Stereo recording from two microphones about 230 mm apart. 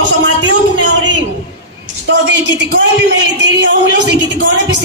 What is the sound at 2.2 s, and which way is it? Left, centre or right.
Speech, right.